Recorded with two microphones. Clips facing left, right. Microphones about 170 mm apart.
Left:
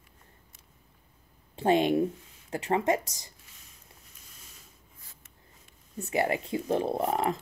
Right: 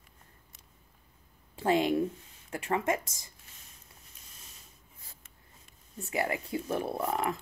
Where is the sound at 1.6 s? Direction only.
20° left (ahead or behind).